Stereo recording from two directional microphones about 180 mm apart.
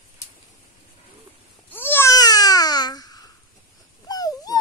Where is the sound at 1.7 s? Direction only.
10° left (ahead or behind).